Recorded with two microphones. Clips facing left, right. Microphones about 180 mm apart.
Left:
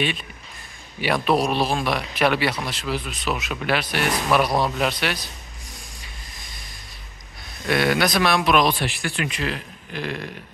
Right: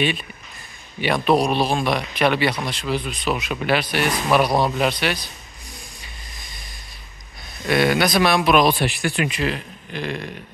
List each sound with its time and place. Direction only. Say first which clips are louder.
1.0 s a man's voice: right 2 dB; 5° left (ahead or behind)
7.6 s a man's voice: right 2 dB; centre (ahead or behind)
8.7 s a man's voice: right 4 dB; 15° right (ahead or behind); by 10.3 s centre (ahead or behind)